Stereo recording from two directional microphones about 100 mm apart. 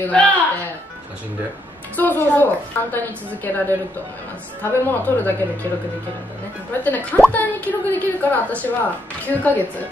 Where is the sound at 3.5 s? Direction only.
20° left (ahead or behind).